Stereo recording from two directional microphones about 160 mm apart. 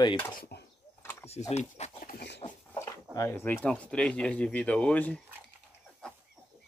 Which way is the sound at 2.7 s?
20° left (ahead or behind).